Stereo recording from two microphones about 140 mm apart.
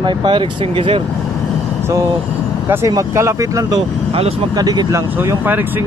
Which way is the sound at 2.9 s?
20° right (ahead or behind).